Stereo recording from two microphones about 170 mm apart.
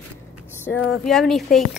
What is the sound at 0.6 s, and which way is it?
Speech, 5° left (ahead or behind).